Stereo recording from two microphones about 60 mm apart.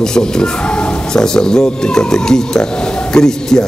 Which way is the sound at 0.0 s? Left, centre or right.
Centre.